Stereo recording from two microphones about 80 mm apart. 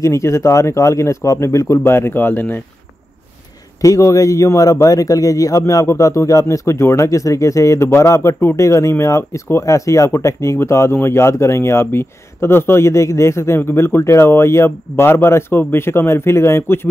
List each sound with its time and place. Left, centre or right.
0.0 s a man's voice: left
3.8 s a man's voice: left